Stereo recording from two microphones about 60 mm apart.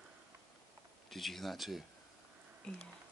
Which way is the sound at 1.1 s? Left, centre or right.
Centre.